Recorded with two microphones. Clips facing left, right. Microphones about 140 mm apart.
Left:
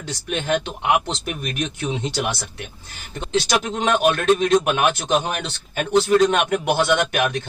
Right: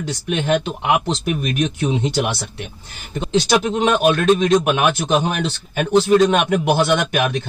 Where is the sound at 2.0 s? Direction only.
25° right (ahead or behind).